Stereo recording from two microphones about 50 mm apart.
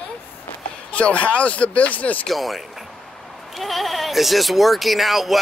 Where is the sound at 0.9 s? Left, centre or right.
Left.